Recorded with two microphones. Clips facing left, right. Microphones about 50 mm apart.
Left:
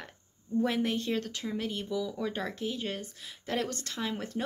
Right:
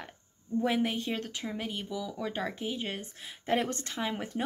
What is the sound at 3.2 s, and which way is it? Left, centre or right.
Speech, right.